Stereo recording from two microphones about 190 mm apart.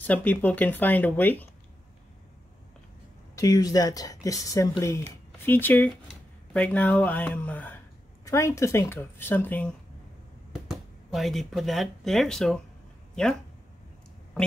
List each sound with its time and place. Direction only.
0.0 s speech: 10° left (ahead or behind)
3.3 s speech: 20° left (ahead or behind)
11.1 s speech: centre (ahead or behind)